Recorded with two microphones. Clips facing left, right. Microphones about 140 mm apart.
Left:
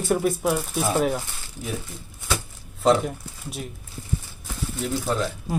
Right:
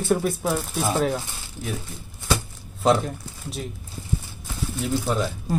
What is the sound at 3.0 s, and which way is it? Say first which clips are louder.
Speech: left 1 dB; 5° left (ahead or behind).